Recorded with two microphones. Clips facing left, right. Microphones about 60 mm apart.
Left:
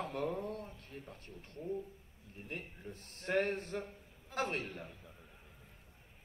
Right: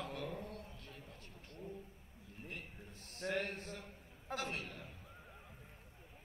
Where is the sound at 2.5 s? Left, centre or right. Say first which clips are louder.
Left 8 dB; left.